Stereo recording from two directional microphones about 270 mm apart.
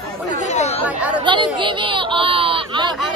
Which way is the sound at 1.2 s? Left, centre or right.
Centre.